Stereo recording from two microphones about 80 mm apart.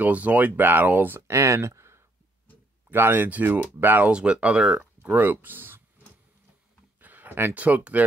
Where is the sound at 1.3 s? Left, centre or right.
Right.